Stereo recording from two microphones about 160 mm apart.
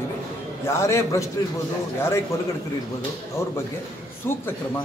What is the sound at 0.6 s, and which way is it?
Speech, 15° left (ahead or behind).